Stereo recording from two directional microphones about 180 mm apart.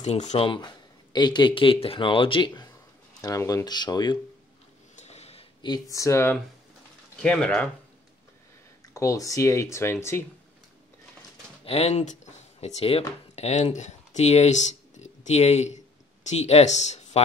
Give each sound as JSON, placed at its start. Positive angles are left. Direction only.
{"t": 0.0, "sound": "speech", "side_deg": 40}
{"t": 0.5, "sound": "speech", "side_deg": 25}
{"t": 4.9, "sound": "a sound", "side_deg": 35}
{"t": 7.2, "sound": "speech", "side_deg": 5}
{"t": 8.8, "sound": "speech", "side_deg": 20}
{"t": 11.6, "sound": "speech", "side_deg": 35}